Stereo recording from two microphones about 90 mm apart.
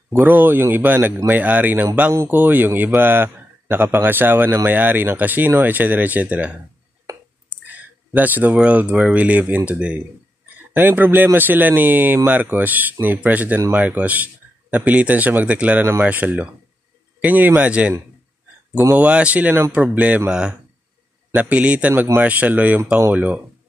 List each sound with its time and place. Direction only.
0.2 s a man's voice: 20° right (ahead or behind)
7.6 s a man's voice: 20° right (ahead or behind)
18.9 s speech: 15° right (ahead or behind)